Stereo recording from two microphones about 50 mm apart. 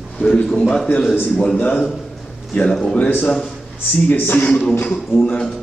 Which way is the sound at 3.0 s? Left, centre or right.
Left.